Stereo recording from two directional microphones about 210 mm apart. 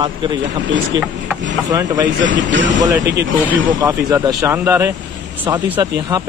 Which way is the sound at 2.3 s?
60° right (ahead or behind).